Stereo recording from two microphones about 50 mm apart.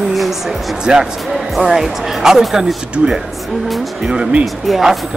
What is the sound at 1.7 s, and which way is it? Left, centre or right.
Speech, centre.